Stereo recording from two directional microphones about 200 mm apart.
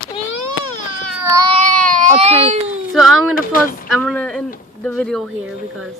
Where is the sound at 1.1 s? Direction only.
15° right (ahead or behind).